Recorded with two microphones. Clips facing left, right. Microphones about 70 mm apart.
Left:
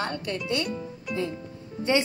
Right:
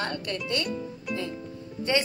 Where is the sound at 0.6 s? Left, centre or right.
Centre.